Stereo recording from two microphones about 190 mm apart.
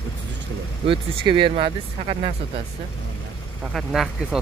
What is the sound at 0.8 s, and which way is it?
Speech, 25° right (ahead or behind).